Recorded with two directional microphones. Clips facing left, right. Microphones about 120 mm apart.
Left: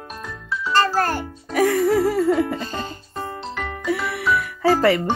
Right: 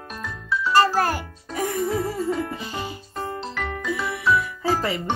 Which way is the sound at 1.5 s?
90° left.